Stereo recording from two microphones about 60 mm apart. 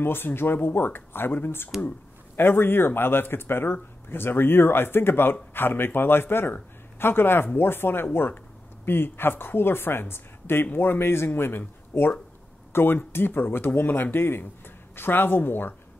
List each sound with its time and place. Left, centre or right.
0.0 s speech: left